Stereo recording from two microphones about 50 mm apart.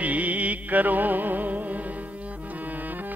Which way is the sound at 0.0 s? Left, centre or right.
Right.